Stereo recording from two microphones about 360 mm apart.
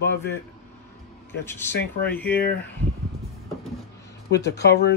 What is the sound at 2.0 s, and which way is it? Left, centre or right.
Speech, centre.